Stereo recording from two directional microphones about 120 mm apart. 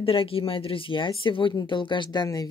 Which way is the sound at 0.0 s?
50° left (ahead or behind).